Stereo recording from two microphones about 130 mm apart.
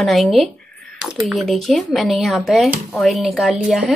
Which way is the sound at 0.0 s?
Centre (ahead or behind).